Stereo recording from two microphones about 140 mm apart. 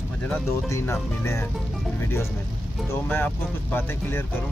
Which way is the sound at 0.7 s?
20° left (ahead or behind).